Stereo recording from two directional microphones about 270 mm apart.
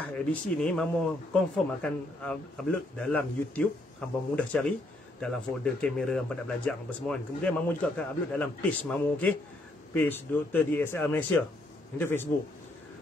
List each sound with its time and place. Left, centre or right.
0.0 s speech: centre